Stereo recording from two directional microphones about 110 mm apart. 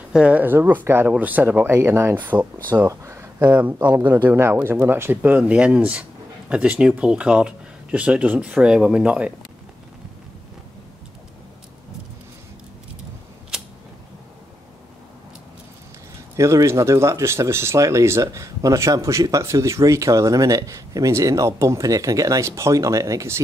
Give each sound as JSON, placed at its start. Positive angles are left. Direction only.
{"t": 0.1, "sound": "speech", "side_deg": -10}
{"t": 2.9, "sound": "speech", "side_deg": -25}
{"t": 16.3, "sound": "speech", "side_deg": -25}